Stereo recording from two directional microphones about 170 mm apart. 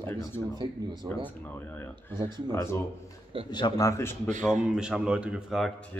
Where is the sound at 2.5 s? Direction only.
15° left (ahead or behind).